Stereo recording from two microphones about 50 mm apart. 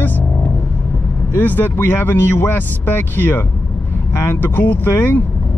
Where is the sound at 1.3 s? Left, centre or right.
Left.